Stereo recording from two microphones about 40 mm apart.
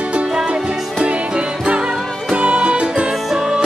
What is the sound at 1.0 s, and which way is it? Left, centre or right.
Music, right.